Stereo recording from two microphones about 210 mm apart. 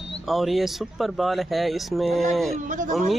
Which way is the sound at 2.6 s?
40° right (ahead or behind).